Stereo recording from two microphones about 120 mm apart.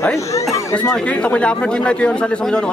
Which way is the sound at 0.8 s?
10° left (ahead or behind).